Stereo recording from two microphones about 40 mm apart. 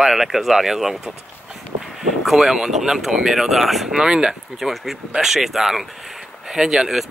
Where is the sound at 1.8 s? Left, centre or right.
Centre.